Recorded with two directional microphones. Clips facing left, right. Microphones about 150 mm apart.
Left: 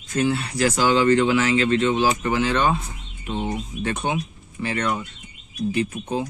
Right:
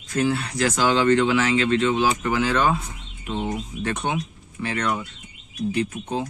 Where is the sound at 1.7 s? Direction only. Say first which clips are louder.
Left 1 dB; 35° left (ahead or behind).